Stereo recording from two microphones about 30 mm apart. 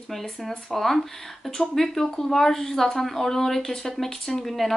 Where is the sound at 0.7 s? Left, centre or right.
Centre.